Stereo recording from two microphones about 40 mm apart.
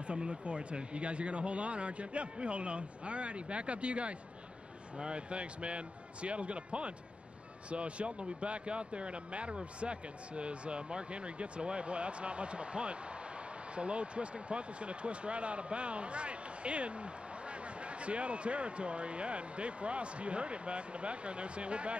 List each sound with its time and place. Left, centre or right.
0.0 s speech: right